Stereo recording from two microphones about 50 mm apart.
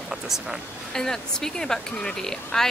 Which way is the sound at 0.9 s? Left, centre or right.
Centre.